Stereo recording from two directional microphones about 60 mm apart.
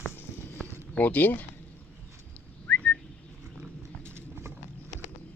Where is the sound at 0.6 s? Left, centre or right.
Left.